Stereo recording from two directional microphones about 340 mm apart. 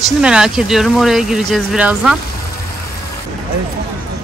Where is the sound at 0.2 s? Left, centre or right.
Centre.